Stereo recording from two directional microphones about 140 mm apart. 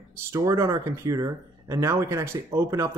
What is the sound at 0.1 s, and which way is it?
Speech, 20° right (ahead or behind).